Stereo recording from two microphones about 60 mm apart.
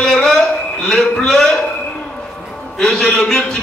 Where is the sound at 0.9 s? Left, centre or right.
Centre.